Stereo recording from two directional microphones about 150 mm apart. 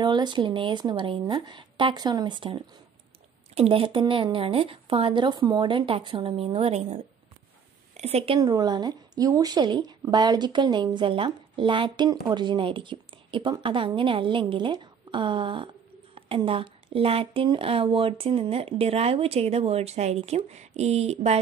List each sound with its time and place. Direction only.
0.0 s speech: 30° right (ahead or behind)
7.9 s a sound: 45° right (ahead or behind)
8.4 s speech: 25° right (ahead or behind); by 21.4 s 45° right (ahead or behind)